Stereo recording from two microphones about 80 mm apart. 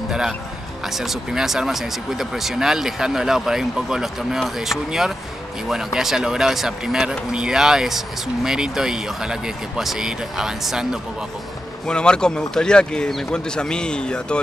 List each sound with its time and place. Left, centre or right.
0.9 s speech: centre
11.9 s speech: centre